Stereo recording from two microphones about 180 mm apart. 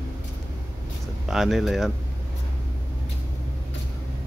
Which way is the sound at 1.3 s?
Centre (ahead or behind).